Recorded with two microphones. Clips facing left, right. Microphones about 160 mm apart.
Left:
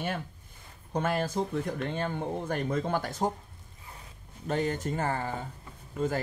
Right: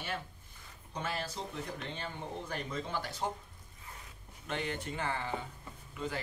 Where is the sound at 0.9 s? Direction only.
50° left (ahead or behind).